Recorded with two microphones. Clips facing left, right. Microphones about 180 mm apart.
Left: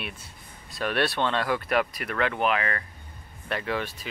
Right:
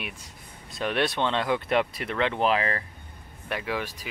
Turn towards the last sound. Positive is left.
turn(degrees=-10)  # may be behind; listen again after turning